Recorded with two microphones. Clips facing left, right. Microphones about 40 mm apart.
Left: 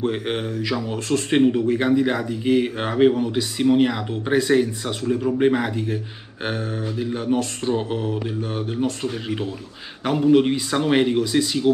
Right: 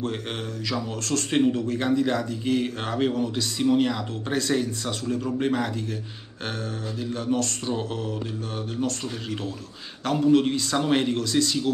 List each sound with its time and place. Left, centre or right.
0.0 s speech: centre
6.4 s mantra: centre